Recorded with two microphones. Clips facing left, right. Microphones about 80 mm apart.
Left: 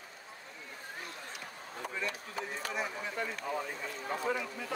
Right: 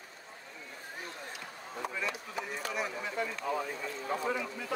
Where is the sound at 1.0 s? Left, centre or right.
Right.